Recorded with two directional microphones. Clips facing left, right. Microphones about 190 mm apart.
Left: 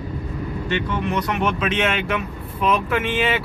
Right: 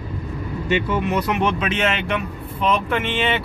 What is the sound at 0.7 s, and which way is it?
Speech, 10° right (ahead or behind).